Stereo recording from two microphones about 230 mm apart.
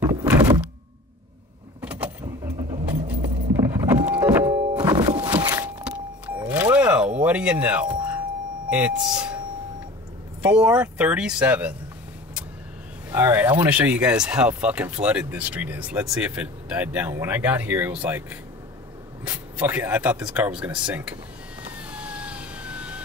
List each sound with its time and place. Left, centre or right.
0.0 s thunk: centre
1.8 s vehicle: centre
3.5 s vehicle: centre
4.6 s thunk: centre
5.4 s power windows: centre
8.6 s speech: centre
10.4 s speech: centre
13.1 s speech: centre
21.7 s vehicle: centre